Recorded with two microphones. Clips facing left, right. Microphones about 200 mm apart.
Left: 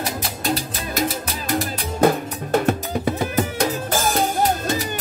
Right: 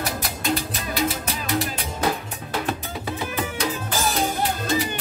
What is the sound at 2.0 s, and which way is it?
Music, 50° left (ahead or behind).